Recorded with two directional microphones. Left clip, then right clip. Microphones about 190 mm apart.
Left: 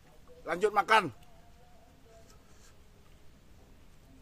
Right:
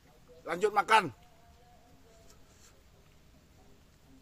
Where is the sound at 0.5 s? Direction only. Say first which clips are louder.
Even; centre (ahead or behind).